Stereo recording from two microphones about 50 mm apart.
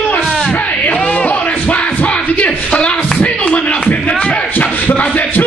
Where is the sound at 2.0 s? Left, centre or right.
Left; by 3.2 s centre.